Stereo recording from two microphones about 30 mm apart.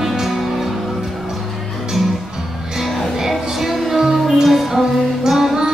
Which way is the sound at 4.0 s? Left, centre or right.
Centre.